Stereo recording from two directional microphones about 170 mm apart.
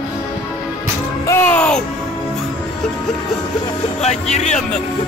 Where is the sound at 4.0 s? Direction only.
40° left (ahead or behind).